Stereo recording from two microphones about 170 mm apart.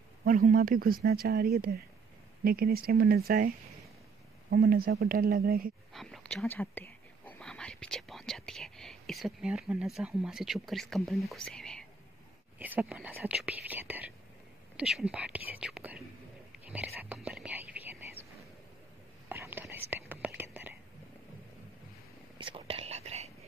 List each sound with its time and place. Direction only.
0.2 s speech: 55° right (ahead or behind)
5.9 s speech: 5° left (ahead or behind)
12.5 s speech: 10° right (ahead or behind)
16.6 s whispering: 10° right (ahead or behind)
19.2 s whispering: 15° right (ahead or behind)
22.4 s whispering: 30° right (ahead or behind)